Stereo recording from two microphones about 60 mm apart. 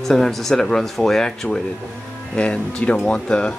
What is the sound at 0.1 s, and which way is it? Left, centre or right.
Speech, centre.